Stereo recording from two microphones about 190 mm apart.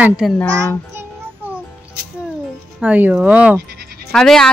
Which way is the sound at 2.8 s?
10° right (ahead or behind).